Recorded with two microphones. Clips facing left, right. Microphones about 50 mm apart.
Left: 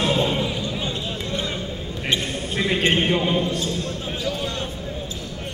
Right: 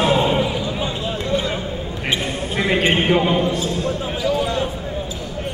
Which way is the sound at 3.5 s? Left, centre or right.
Centre.